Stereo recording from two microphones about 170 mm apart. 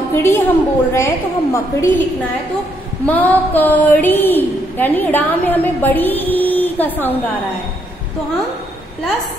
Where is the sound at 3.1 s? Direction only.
10° left (ahead or behind).